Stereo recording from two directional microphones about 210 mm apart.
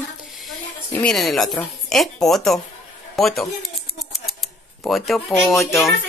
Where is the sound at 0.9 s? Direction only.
5° left (ahead or behind).